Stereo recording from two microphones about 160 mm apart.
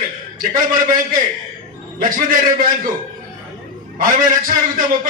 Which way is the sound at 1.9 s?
60° right (ahead or behind).